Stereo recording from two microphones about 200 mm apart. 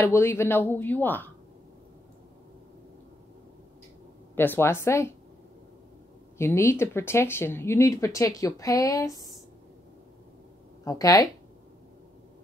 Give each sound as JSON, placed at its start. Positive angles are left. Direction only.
{"t": 0.0, "sound": "speech", "side_deg": 15}
{"t": 4.4, "sound": "speech", "side_deg": 10}
{"t": 6.3, "sound": "speech", "side_deg": 15}
{"t": 10.8, "sound": "speech", "side_deg": 15}